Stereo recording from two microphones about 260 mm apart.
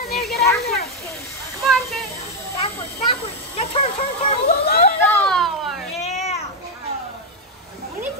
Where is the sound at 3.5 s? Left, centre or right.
Left.